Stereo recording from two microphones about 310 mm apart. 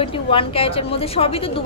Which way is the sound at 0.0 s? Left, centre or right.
Centre.